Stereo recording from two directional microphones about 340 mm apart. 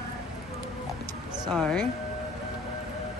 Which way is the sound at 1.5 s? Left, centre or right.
Centre.